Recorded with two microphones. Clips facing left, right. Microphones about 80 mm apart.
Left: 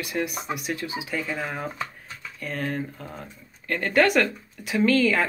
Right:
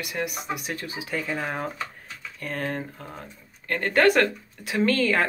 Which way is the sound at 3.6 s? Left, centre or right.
Right.